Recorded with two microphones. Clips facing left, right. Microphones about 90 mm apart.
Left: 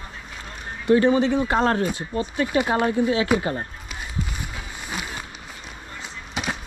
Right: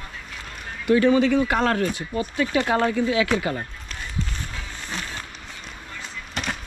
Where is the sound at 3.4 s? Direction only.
30° left (ahead or behind).